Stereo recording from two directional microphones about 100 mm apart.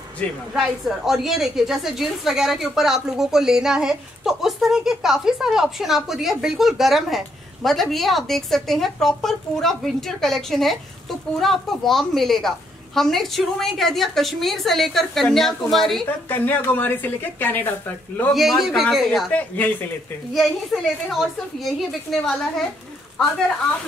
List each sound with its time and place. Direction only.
0.2 s speech: 15° left (ahead or behind)
0.6 s speech: 5° right (ahead or behind)
16.3 s a woman's voice: 20° left (ahead or behind)
18.3 s speech: centre (ahead or behind)
19.3 s speech: 15° left (ahead or behind)
20.3 s speech: centre (ahead or behind)